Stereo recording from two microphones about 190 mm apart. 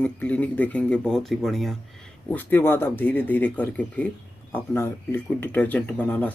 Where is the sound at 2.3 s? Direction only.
10° left (ahead or behind).